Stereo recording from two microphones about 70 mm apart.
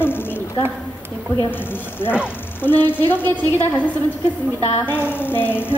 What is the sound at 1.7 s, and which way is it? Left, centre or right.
A woman's voice, left.